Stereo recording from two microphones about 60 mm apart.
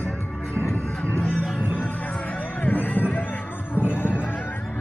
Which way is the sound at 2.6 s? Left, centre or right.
Left.